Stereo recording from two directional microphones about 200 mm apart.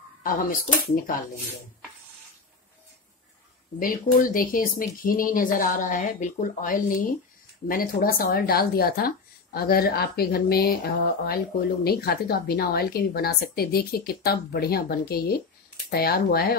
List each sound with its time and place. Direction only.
0.2 s speech: 45° left (ahead or behind)
3.8 s speech: 45° left (ahead or behind)